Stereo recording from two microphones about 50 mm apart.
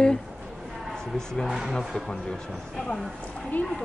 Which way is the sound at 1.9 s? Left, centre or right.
Centre.